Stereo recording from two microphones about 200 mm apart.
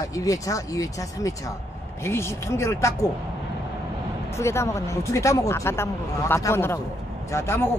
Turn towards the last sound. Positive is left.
turn(degrees=15)  # may be behind; listen again after turning